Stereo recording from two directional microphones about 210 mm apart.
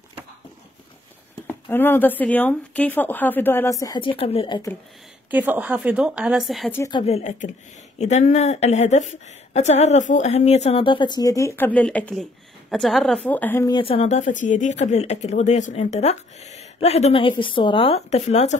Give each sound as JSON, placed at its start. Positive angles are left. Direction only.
{"t": 1.5, "sound": "speech", "side_deg": 10}
{"t": 5.3, "sound": "a woman's voice", "side_deg": -5}
{"t": 6.7, "sound": "speech", "side_deg": 15}
{"t": 7.0, "sound": "a woman's voice", "side_deg": 30}
{"t": 13.7, "sound": "speech", "side_deg": 25}